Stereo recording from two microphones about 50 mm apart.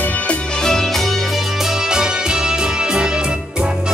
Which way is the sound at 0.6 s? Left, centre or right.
Centre.